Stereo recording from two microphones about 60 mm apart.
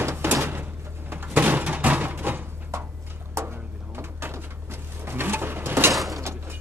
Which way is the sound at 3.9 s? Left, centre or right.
Right.